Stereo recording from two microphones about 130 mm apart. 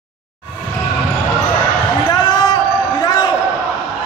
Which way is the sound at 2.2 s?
30° left (ahead or behind).